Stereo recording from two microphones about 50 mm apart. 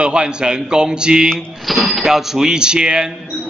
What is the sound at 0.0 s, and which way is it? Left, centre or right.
Speech, centre.